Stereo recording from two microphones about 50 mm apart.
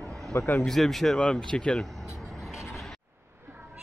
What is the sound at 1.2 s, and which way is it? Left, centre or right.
Speech, centre.